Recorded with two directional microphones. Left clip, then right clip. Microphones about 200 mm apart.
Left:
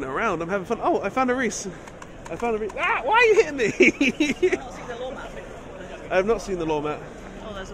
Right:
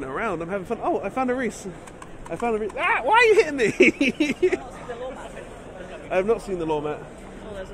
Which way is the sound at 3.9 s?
20° right (ahead or behind).